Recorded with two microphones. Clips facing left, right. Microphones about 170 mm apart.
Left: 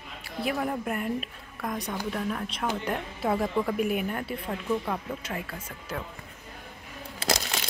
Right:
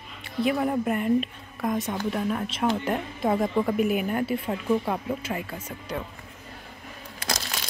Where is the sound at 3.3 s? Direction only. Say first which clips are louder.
Right 3 dB; 15° right (ahead or behind).